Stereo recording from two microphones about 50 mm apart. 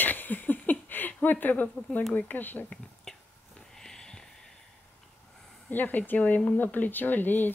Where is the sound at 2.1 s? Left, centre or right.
Left.